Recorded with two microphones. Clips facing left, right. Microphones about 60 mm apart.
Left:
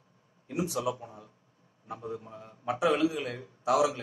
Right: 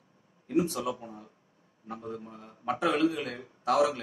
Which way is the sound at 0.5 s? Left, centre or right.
Right.